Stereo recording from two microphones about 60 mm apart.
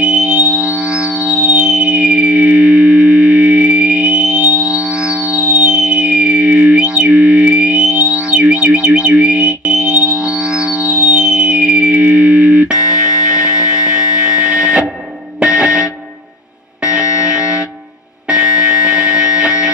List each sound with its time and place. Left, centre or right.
0.0 s music: centre